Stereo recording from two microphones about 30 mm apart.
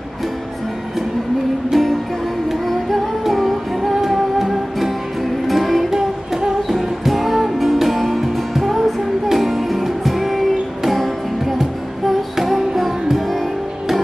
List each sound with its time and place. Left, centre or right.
1.7 s music: centre
5.9 s music: centre
6.7 s music: centre